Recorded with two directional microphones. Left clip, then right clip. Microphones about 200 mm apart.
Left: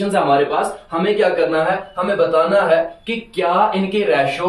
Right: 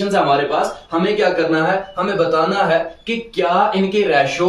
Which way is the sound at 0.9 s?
20° right (ahead or behind).